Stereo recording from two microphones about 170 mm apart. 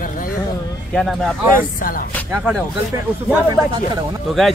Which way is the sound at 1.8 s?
55° left (ahead or behind).